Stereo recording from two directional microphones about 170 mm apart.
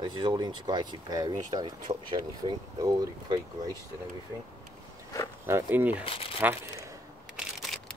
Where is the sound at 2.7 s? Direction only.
20° right (ahead or behind).